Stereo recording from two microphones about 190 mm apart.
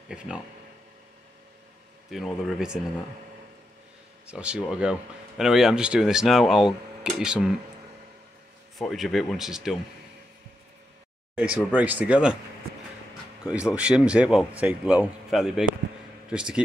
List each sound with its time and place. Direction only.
2.0 s speech: centre (ahead or behind)
4.3 s speech: 5° right (ahead or behind)
8.7 s speech: centre (ahead or behind)
11.5 s speech: 10° right (ahead or behind)
13.4 s speech: 5° right (ahead or behind)